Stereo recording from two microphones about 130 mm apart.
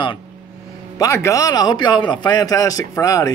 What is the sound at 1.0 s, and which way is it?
Speech, 20° left (ahead or behind).